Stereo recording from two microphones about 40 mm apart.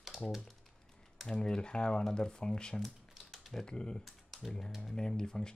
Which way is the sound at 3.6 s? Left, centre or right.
Left.